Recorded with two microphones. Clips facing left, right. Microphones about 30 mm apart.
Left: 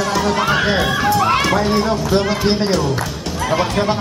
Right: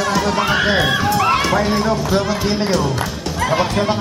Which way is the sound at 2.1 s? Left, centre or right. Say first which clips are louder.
Left 1 dB; centre.